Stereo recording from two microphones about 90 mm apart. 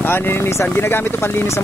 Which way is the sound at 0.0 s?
25° left (ahead or behind).